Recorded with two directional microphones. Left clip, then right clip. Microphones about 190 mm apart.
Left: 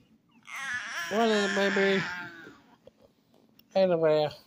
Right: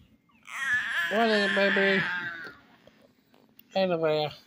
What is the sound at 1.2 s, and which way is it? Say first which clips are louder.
Speech: even; 5° right (ahead or behind).